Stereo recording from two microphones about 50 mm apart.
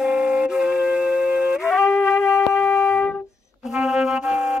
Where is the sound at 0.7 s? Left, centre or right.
Right.